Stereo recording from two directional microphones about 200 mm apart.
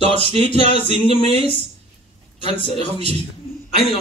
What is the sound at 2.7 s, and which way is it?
Speech, 30° right (ahead or behind).